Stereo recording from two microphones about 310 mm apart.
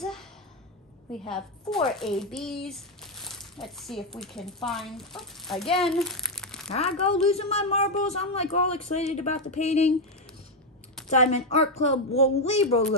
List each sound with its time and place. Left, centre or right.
1.7 s speech: centre
5.8 s crumpling: centre
6.7 s speech: centre
11.1 s speech: left